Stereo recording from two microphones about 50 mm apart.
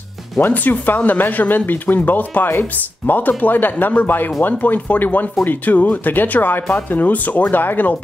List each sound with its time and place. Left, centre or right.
0.4 s speech: left